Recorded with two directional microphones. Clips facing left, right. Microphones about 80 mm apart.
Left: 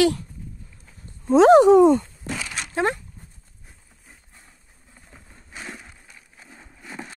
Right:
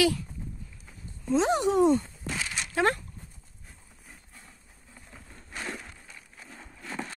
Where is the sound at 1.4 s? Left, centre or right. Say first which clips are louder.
Left 14 dB; left.